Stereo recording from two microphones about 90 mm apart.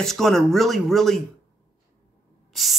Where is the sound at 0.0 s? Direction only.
5° left (ahead or behind).